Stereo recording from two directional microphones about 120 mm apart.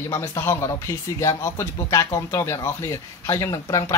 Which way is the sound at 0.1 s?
30° left (ahead or behind).